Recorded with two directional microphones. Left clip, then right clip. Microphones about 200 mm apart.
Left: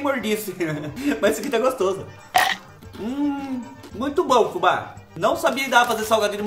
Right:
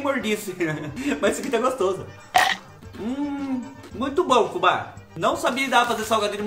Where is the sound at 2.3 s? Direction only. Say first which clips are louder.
Even; centre (ahead or behind).